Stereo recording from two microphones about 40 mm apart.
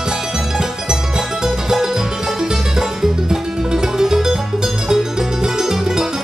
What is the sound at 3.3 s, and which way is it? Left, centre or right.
Music, centre.